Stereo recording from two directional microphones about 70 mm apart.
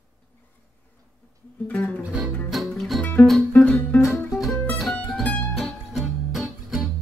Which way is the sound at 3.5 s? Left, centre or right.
Left.